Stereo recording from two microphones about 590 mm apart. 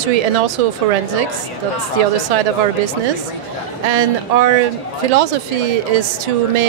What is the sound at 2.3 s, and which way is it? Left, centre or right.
Speech, right.